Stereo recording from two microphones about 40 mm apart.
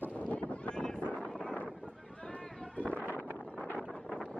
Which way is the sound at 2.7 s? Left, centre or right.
Left.